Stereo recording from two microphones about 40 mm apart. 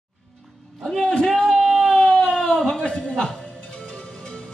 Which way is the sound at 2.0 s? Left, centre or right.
Left.